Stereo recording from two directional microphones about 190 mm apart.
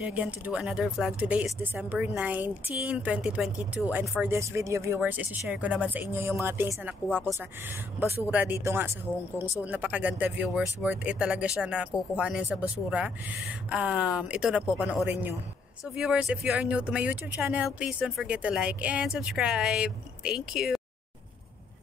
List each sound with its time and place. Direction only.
0.0 s speech: 5° right (ahead or behind)